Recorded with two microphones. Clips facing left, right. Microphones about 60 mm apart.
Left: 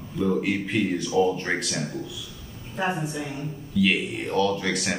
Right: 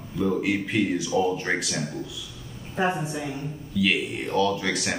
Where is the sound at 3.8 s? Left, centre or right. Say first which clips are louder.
Left 1 dB; centre.